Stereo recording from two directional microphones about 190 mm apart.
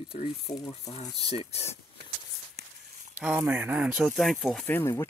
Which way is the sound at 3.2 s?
10° right (ahead or behind).